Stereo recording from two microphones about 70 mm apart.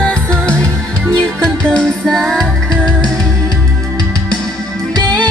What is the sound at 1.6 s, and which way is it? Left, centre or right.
Music, centre.